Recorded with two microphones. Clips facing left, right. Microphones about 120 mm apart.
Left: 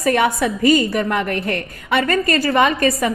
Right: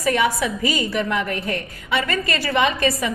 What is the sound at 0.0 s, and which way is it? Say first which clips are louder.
A woman's voice: left 3 dB; 50° left (ahead or behind).